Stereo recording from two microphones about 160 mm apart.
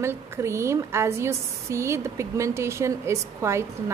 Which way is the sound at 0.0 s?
15° right (ahead or behind).